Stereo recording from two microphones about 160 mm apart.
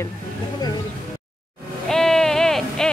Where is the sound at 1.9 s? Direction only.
5° left (ahead or behind).